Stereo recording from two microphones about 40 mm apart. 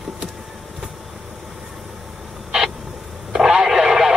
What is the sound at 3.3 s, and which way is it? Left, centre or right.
Radio, centre.